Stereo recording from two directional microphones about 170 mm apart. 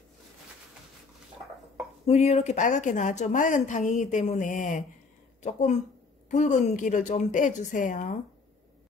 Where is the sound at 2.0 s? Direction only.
40° left (ahead or behind).